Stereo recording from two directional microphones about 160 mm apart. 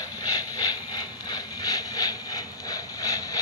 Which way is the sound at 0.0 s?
20° left (ahead or behind).